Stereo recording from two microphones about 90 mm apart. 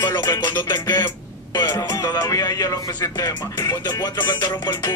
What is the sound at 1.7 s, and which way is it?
Speech, 35° left (ahead or behind).